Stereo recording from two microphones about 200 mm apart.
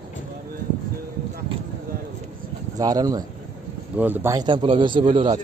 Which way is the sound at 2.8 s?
20° right (ahead or behind).